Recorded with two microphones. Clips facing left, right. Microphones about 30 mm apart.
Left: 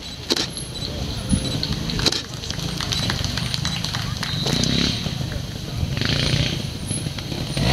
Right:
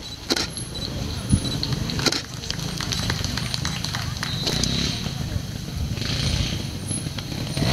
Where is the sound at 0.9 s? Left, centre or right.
Centre.